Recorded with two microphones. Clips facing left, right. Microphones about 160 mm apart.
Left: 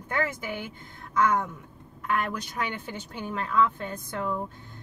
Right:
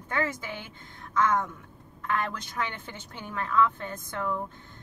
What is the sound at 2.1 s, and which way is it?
A woman's voice, 10° left (ahead or behind).